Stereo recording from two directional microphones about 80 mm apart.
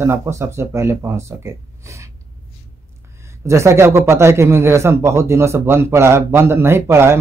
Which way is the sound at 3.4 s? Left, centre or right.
Right.